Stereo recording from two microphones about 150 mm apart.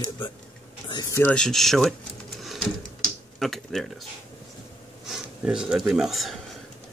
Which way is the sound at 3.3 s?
Centre (ahead or behind).